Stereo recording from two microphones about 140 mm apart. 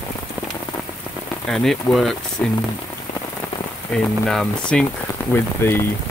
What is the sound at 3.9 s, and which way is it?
Speech, 5° left (ahead or behind).